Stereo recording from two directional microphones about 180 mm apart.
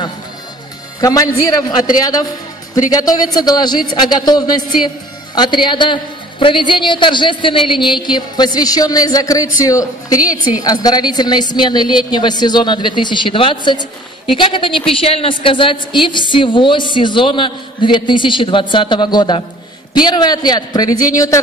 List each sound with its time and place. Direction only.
1.0 s a woman's voice: 20° left (ahead or behind)